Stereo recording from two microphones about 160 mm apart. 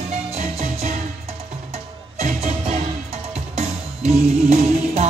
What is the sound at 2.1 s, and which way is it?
Music, 40° right (ahead or behind).